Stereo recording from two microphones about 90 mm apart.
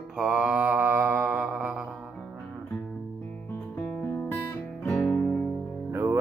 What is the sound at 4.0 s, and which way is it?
Music, 20° left (ahead or behind).